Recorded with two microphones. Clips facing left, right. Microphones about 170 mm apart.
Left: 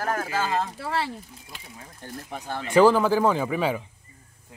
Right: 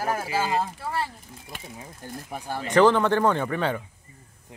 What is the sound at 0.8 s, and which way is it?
Speech, 90° left.